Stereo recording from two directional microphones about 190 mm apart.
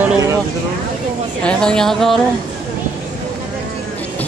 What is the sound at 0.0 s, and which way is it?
Speech, 15° right (ahead or behind).